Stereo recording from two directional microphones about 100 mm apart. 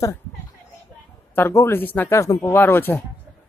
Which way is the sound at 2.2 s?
30° left (ahead or behind).